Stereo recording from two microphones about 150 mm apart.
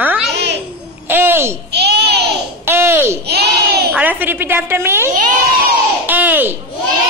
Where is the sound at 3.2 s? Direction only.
90° right.